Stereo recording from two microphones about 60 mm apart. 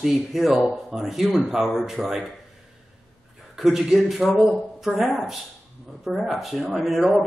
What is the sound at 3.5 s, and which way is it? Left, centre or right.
Speech, centre.